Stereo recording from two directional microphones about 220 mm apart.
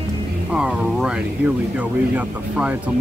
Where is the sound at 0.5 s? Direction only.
5° right (ahead or behind).